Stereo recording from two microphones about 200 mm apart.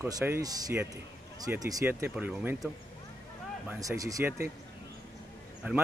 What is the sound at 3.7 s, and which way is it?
Speech, 15° right (ahead or behind).